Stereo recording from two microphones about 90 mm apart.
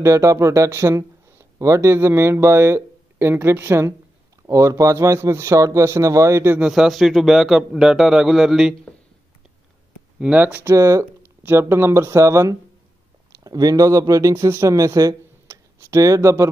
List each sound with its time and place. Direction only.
0.0 s speech: 35° right (ahead or behind)
6.6 s a man's voice: 5° right (ahead or behind)
10.1 s speech: 10° right (ahead or behind)
10.4 s speech: 25° right (ahead or behind)